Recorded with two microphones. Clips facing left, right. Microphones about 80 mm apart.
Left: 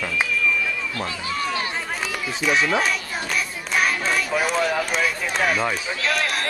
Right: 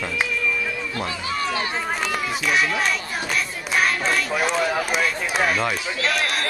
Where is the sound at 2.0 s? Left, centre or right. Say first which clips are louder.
Even; centre.